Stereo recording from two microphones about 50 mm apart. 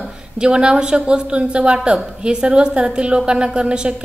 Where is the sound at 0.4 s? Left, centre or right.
Centre.